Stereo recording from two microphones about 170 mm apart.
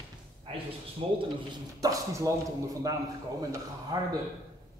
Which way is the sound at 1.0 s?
35° right (ahead or behind).